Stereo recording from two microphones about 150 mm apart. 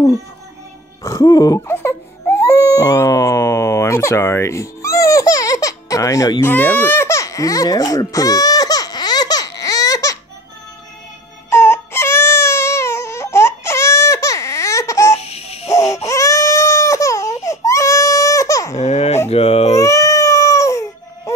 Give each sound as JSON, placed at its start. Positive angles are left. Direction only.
{"t": 1.0, "sound": "baby cry", "side_deg": 20}
{"t": 6.4, "sound": "baby cry", "side_deg": 10}
{"t": 11.5, "sound": "baby cry", "side_deg": 15}
{"t": 15.1, "sound": "baby laughter", "side_deg": 45}
{"t": 15.7, "sound": "baby cry", "side_deg": 20}
{"t": 18.8, "sound": "a sound", "side_deg": 50}
{"t": 19.2, "sound": "baby cry", "side_deg": 45}
{"t": 19.8, "sound": "cat", "side_deg": 20}